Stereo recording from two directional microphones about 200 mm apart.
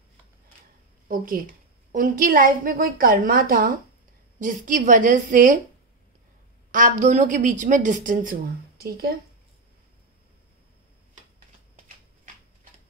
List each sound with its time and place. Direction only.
1.0 s a woman's voice: 45° right (ahead or behind)
6.7 s a woman's voice: 40° right (ahead or behind)